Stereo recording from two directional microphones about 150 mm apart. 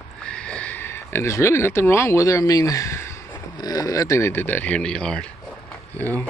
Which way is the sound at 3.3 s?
25° left (ahead or behind).